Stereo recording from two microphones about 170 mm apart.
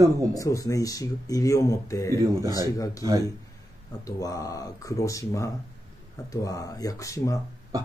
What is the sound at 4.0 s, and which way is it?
Speech, 20° left (ahead or behind).